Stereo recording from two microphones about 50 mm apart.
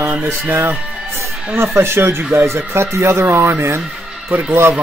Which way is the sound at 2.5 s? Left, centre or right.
Right.